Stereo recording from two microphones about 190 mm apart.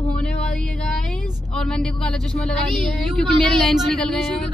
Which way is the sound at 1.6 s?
5° left (ahead or behind).